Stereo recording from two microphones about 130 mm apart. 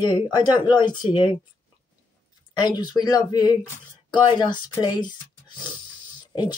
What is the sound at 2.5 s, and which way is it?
Speech, 35° left (ahead or behind).